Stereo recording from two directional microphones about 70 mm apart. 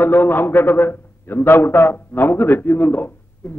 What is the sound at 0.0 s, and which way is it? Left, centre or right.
A man's voice, left.